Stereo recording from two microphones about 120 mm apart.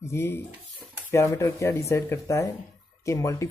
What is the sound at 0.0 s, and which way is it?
Speech, 20° left (ahead or behind).